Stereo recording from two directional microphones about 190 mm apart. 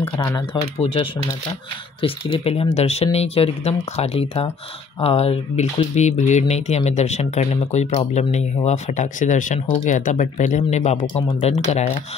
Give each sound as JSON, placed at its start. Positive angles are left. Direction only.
{"t": 0.7, "sound": "speech", "side_deg": 30}